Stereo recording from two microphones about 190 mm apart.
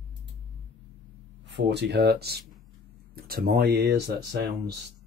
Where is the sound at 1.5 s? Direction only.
65° right (ahead or behind).